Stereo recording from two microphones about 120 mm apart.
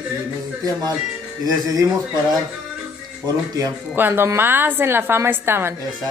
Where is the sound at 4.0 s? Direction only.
15° right (ahead or behind).